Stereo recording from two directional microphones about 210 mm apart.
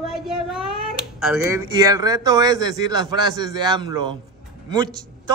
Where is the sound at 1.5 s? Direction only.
15° right (ahead or behind).